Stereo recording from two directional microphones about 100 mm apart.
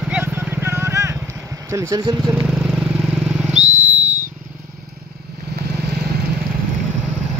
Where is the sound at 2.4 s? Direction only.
5° right (ahead or behind).